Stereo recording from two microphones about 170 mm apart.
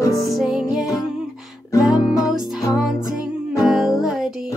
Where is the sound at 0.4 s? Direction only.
5° right (ahead or behind).